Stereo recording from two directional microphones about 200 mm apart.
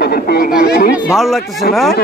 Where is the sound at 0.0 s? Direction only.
50° left (ahead or behind).